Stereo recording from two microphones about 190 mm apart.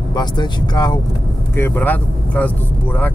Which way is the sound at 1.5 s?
10° left (ahead or behind).